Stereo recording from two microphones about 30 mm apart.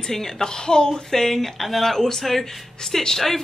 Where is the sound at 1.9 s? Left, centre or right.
Centre.